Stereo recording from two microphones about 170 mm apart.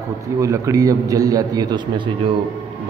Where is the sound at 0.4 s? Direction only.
20° right (ahead or behind).